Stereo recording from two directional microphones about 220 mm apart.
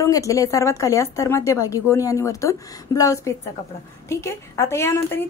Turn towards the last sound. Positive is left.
turn(degrees=10)  # may be behind; listen again after turning